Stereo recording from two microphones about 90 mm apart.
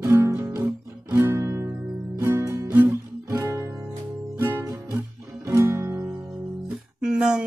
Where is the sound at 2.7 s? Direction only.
25° right (ahead or behind).